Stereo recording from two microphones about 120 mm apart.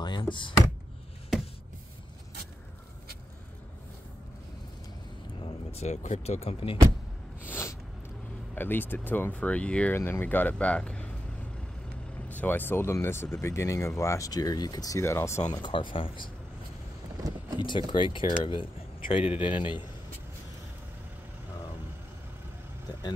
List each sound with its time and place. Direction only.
0.0 s speech: 40° left (ahead or behind)
5.4 s speech: 60° left (ahead or behind)
7.4 s a sound: 20° left (ahead or behind)
8.5 s speech: 15° left (ahead or behind)
12.3 s speech: 15° left (ahead or behind)
15.5 s speech: 40° left (ahead or behind)
17.6 s speech: 40° left (ahead or behind)
19.2 s a man's voice: 10° right (ahead or behind)
19.5 s speech: 45° left (ahead or behind)